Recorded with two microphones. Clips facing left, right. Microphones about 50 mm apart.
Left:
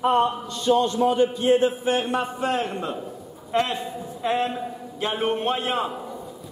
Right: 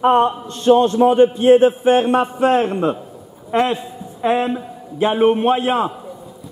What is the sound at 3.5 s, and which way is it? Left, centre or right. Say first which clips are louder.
A man's voice: right 6 dB; right.